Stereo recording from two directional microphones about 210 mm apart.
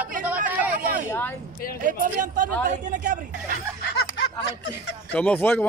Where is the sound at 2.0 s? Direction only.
40° right (ahead or behind).